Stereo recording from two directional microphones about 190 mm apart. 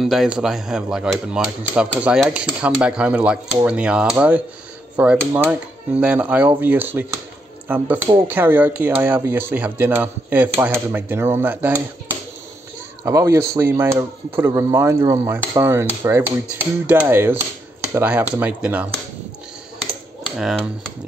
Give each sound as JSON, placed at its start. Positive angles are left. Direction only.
{"t": 0.0, "sound": "speech", "side_deg": 0}
{"t": 13.0, "sound": "speech", "side_deg": -15}
{"t": 20.3, "sound": "speech", "side_deg": 0}